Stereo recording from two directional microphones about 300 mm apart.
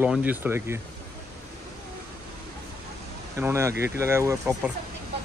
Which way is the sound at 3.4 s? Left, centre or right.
Centre.